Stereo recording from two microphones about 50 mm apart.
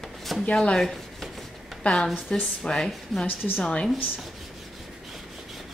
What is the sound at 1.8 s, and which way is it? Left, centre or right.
A woman's voice, left.